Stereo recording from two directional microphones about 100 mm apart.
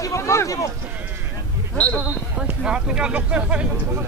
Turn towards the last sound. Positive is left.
turn(degrees=-10)  # may be behind; listen again after turning